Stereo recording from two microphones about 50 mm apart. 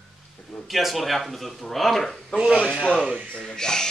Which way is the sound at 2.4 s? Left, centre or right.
Centre.